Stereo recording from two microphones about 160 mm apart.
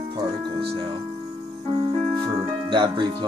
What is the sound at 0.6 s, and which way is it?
Speech, 30° right (ahead or behind).